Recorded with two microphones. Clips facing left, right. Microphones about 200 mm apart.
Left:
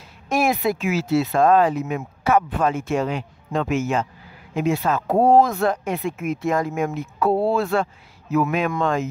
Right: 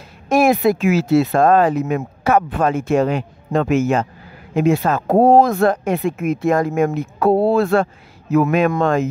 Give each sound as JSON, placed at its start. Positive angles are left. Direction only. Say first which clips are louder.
{"t": 0.3, "sound": "speech", "louder": "right 6 dB", "side_deg": -55}
{"t": 5.4, "sound": "speech", "louder": "right 4 dB", "side_deg": -60}
{"t": 7.2, "sound": "speech", "louder": "right 5 dB", "side_deg": -35}
{"t": 7.5, "sound": "speech", "louder": "right 6 dB", "side_deg": -55}